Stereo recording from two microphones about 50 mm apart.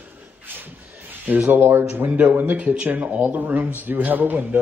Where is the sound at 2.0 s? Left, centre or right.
Right.